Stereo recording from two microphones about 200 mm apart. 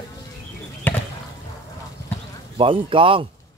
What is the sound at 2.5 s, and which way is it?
Speech, 25° right (ahead or behind).